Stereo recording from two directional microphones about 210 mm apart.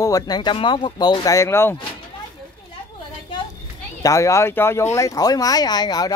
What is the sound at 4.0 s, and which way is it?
Speech, 15° left (ahead or behind).